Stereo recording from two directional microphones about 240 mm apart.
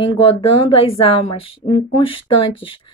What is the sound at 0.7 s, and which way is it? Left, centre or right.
A woman's voice, left.